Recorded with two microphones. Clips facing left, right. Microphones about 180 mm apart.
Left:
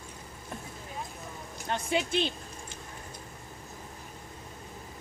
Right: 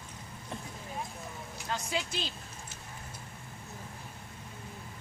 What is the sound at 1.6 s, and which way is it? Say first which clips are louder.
Speech: left 5 dB; 25° left (ahead or behind).